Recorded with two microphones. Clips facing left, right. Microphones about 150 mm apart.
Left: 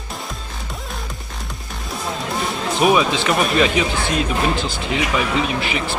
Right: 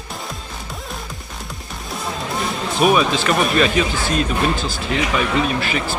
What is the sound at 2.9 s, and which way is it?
Speech, 5° left (ahead or behind).